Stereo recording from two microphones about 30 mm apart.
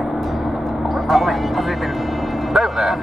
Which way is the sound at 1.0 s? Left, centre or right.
Centre.